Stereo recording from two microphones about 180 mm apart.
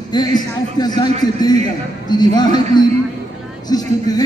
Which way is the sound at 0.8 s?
25° left (ahead or behind).